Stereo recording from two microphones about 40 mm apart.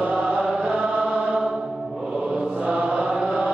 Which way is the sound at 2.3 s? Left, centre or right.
Right.